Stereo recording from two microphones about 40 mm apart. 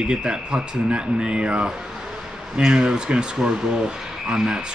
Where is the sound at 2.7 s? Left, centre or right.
Right.